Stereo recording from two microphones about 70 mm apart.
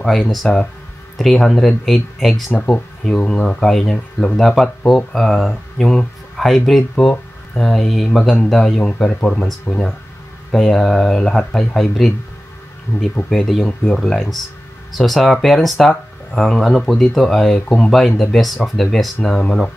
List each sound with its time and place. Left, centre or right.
0.0 s speech: centre
3.2 s speech: left
3.4 s speech: centre
8.8 s speech: centre
13.3 s speech: centre
14.1 s speech: centre